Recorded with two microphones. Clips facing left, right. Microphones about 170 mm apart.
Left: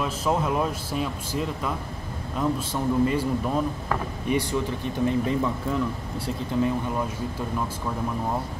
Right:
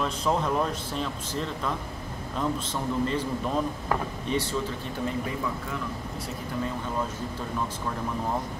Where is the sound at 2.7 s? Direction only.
10° left (ahead or behind).